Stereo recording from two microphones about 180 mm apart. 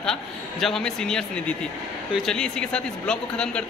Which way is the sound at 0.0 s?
Centre (ahead or behind).